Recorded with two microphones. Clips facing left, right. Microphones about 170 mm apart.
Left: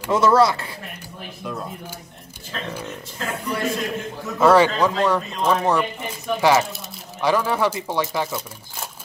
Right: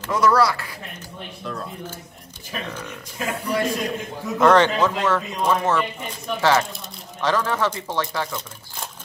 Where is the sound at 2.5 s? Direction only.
15° right (ahead or behind).